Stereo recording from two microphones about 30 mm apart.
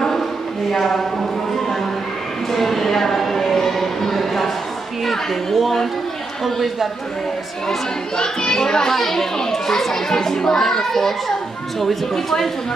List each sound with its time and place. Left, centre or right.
0.7 s a child's voice: centre
2.5 s a sound: centre
5.0 s a child's voice: centre
8.2 s a child's voice: left; by 12.4 s centre